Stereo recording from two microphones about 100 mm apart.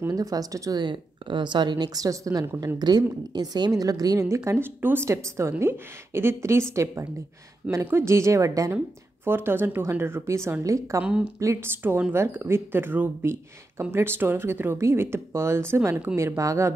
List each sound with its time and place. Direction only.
0.1 s a woman's voice: 40° right (ahead or behind)
9.2 s a woman's voice: 20° right (ahead or behind)
11.0 s speech: 10° right (ahead or behind)
11.3 s speech: 25° right (ahead or behind)